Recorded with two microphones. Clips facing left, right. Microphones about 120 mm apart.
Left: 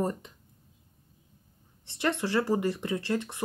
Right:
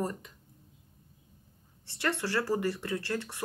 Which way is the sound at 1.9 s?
20° left (ahead or behind).